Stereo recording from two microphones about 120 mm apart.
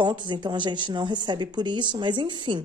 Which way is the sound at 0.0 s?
40° right (ahead or behind).